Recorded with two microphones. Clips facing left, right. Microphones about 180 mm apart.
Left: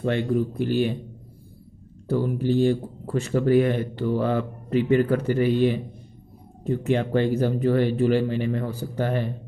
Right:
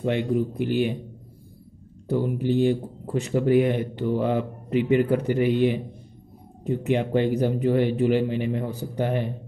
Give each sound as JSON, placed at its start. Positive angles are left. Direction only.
{"t": 0.0, "sound": "speech", "side_deg": -15}
{"t": 2.0, "sound": "speech", "side_deg": -15}